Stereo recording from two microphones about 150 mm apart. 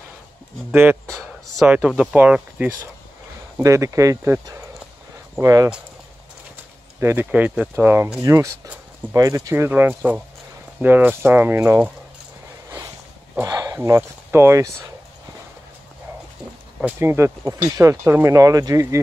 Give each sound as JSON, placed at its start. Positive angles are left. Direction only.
{"t": 0.7, "sound": "speech", "side_deg": -10}
{"t": 7.0, "sound": "speech", "side_deg": -15}
{"t": 13.4, "sound": "a sound", "side_deg": -25}
{"t": 13.7, "sound": "speech", "side_deg": -15}
{"t": 16.8, "sound": "speech", "side_deg": -15}